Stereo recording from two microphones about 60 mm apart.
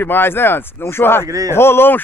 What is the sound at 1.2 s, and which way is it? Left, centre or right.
Speech, right.